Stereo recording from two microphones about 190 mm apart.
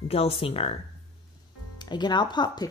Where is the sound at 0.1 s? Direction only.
30° left (ahead or behind).